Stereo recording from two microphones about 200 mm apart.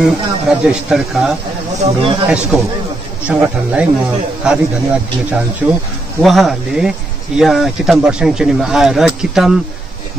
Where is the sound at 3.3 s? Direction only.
5° right (ahead or behind).